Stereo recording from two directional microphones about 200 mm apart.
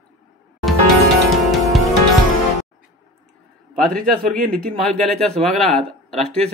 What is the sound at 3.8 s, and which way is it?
A man's voice, centre (ahead or behind).